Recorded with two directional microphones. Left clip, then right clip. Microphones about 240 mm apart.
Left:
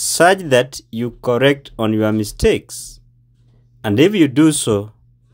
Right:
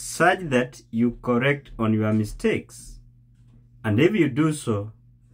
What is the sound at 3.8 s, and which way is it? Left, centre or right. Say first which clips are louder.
Speech: left 7 dB; left.